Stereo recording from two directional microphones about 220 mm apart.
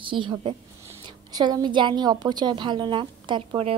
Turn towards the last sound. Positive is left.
turn(degrees=-25)  # may be behind; listen again after turning